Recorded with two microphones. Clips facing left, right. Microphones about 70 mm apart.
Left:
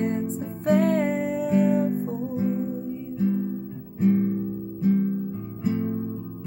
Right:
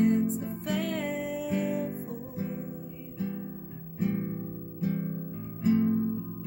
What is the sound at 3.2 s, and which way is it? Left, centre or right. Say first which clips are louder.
Guitar: left 10 dB; centre.